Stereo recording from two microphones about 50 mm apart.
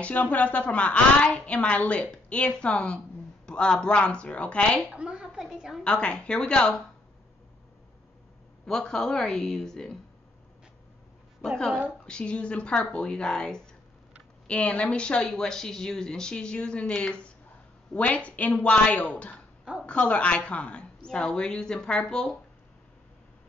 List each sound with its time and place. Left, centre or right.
0.0 s a woman's voice: left
4.9 s a woman's voice: right
5.2 s a sound: centre
5.9 s a woman's voice: left
8.6 s a woman's voice: centre
11.4 s a woman's voice: centre
12.1 s a woman's voice: left